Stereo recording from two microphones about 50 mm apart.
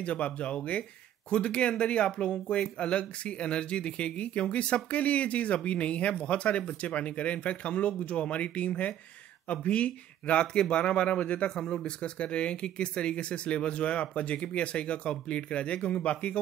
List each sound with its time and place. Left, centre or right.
0.0 s speech: left